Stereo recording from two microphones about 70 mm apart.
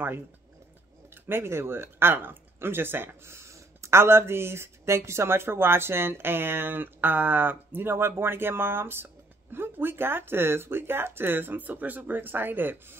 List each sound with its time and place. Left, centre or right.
1.1 s speech: right